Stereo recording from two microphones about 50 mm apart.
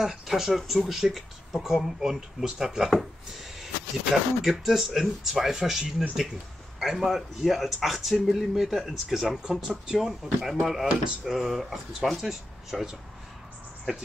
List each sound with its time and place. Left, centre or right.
0.0 s speech: centre
5.5 s speech: centre
10.9 s a sound: centre
11.3 s speech: centre